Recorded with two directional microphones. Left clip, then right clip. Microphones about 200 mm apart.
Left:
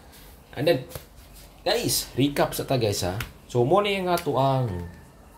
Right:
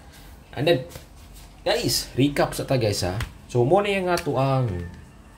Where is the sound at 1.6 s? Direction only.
5° left (ahead or behind).